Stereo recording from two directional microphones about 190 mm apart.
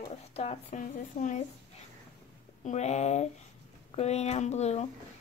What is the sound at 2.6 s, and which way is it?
Speech, 35° left (ahead or behind).